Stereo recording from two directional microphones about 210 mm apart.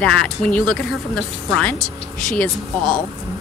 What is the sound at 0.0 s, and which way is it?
Speech, 5° left (ahead or behind).